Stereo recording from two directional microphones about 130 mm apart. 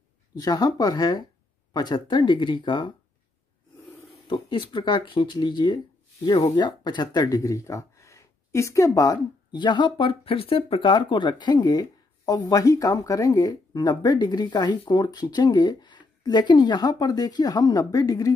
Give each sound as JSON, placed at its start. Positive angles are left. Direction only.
{"t": 0.4, "sound": "speech", "side_deg": 30}
{"t": 4.3, "sound": "speech", "side_deg": 40}